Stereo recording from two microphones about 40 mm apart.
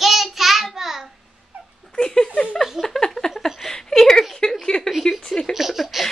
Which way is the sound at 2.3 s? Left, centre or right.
Left.